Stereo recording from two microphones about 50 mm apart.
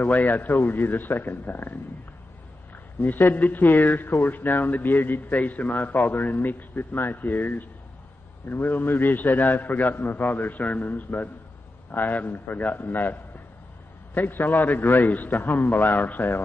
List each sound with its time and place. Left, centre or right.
0.0 s a man's voice: left